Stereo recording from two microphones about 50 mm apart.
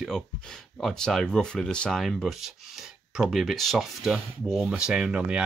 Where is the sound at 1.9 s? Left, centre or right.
Centre.